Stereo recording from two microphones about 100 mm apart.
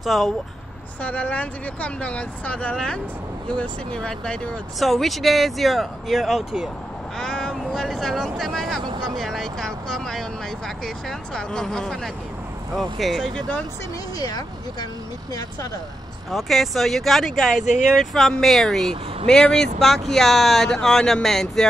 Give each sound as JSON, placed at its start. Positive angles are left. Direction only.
{"t": 0.0, "sound": "speech", "side_deg": 0}
{"t": 1.0, "sound": "speech", "side_deg": 15}
{"t": 7.2, "sound": "speech", "side_deg": 5}
{"t": 14.1, "sound": "speech", "side_deg": 40}
{"t": 16.3, "sound": "speech", "side_deg": 0}